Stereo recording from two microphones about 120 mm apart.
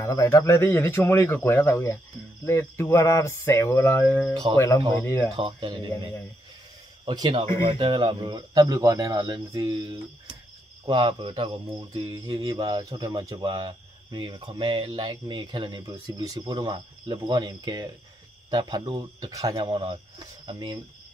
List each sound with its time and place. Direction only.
0.0 s speech: 25° left (ahead or behind)
5.3 s speech: 50° right (ahead or behind)
7.1 s speech: 40° right (ahead or behind)
10.9 s speech: 40° right (ahead or behind)
12.1 s speech: 35° right (ahead or behind)